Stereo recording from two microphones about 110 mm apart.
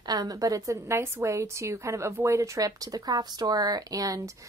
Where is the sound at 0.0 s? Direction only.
35° right (ahead or behind).